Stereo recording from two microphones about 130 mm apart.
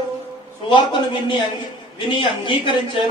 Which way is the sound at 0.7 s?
40° left (ahead or behind).